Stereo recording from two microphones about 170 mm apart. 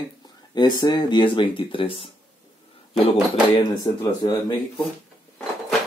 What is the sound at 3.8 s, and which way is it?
Speech, 25° left (ahead or behind).